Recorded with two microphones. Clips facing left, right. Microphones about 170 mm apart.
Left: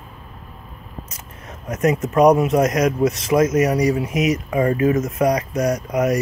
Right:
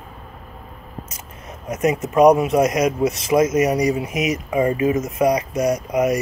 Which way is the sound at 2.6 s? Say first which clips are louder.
Even; 15° right (ahead or behind).